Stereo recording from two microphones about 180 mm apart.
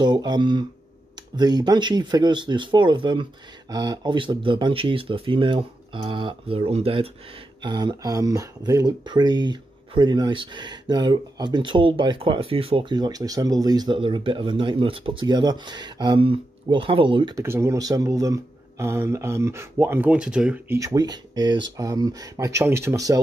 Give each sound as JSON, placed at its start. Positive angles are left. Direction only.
{"t": 0.0, "sound": "speech", "side_deg": -25}
{"t": 17.5, "sound": "speech", "side_deg": -15}